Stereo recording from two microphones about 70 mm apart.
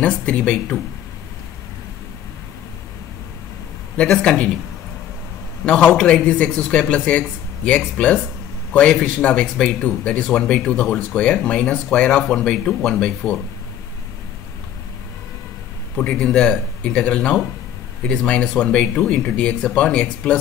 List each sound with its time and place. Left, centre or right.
0.0 s speech: centre
3.9 s speech: centre
5.7 s speech: centre
16.0 s speech: centre